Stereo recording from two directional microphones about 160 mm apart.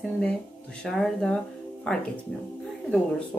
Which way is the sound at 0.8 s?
5° left (ahead or behind).